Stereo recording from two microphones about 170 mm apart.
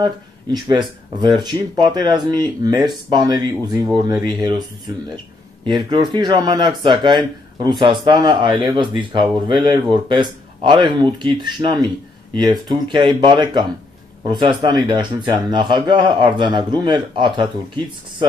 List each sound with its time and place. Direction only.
0.0 s speech: 25° right (ahead or behind)
5.7 s speech: 25° right (ahead or behind)